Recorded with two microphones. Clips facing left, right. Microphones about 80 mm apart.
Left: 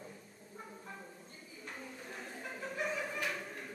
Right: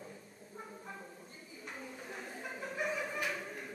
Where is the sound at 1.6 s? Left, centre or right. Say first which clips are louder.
Right 1 dB; centre.